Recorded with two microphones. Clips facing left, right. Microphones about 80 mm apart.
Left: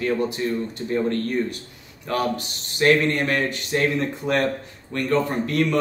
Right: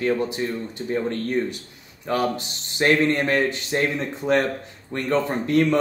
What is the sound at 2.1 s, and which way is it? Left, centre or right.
Speech, right.